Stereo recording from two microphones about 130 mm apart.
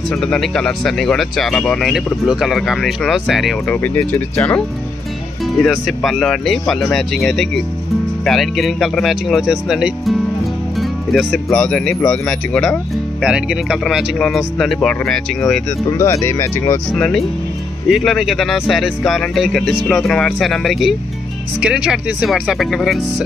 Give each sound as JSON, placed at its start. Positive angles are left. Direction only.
{"t": 0.1, "sound": "speech", "side_deg": 5}
{"t": 3.7, "sound": "speech", "side_deg": 15}
{"t": 5.6, "sound": "speech", "side_deg": 0}
{"t": 15.9, "sound": "speech", "side_deg": 20}
{"t": 16.9, "sound": "speech", "side_deg": 5}